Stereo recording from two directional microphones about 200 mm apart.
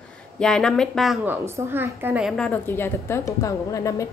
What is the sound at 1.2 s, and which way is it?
A woman's voice, 10° right (ahead or behind).